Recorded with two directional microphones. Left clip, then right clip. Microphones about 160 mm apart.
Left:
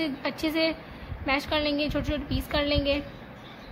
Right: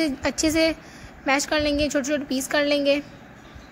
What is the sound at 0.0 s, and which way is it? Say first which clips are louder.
A woman's voice: right 6 dB; 40° right (ahead or behind).